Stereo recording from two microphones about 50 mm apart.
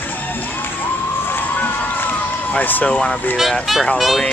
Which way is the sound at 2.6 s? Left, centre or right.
Left.